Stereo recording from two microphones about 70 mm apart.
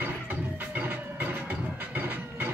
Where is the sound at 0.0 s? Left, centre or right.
Right.